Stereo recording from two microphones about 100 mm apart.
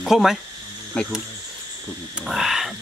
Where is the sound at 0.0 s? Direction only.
Centre (ahead or behind).